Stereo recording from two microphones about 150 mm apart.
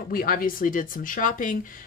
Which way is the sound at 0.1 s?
70° left (ahead or behind).